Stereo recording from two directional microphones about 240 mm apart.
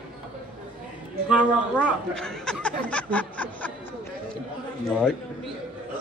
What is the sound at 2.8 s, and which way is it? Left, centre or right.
Snicker, centre.